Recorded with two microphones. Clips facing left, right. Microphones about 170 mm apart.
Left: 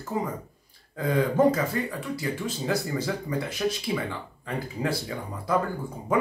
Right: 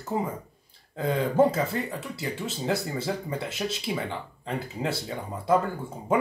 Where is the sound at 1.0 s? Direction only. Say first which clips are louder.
Even; 25° right (ahead or behind).